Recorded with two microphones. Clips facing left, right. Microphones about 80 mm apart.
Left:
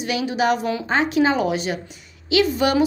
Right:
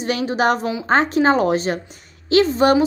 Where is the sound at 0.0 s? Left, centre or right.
Right.